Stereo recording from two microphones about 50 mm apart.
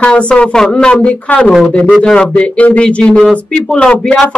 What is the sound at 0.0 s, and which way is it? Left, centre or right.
Speech, left.